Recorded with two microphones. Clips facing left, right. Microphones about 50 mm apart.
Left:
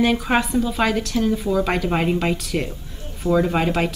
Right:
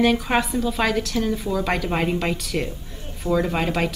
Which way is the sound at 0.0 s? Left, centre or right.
Centre.